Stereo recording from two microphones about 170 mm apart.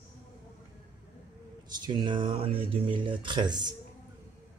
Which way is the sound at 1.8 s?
30° right (ahead or behind).